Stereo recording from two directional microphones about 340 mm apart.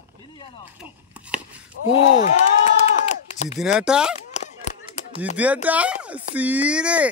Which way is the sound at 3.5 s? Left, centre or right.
Centre.